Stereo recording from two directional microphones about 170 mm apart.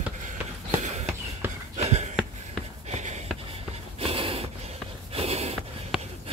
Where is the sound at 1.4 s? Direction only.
10° right (ahead or behind).